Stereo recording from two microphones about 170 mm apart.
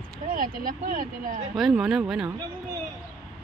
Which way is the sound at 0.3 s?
55° right (ahead or behind).